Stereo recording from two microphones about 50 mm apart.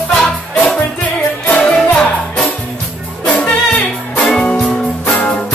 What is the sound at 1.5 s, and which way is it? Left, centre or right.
Music, left.